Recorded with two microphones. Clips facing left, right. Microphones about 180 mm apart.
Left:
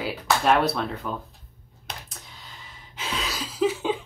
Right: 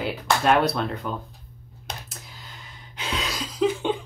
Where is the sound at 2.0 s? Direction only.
Centre (ahead or behind).